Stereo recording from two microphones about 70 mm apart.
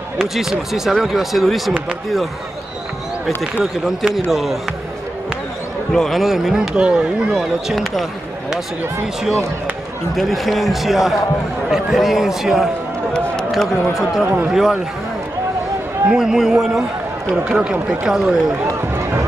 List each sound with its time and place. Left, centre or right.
0.2 s speech: centre
3.8 s speech: centre
5.9 s speech: centre
7.7 s speech: centre
13.9 s speech: centre
16.1 s speech: centre
18.7 s run: right